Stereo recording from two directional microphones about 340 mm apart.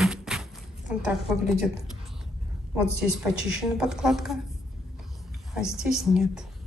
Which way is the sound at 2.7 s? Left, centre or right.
Centre.